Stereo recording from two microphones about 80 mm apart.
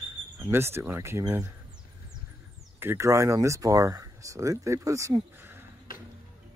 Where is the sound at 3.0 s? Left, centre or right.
Right.